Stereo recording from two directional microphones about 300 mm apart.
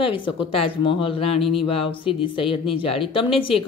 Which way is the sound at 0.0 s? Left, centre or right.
Centre.